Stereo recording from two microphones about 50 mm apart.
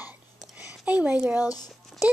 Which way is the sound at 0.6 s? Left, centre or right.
Right.